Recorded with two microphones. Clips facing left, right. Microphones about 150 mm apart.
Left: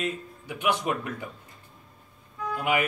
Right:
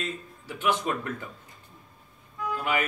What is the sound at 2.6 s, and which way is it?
Speech, 15° left (ahead or behind).